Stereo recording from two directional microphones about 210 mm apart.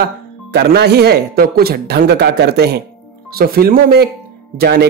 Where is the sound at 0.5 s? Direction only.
50° right (ahead or behind).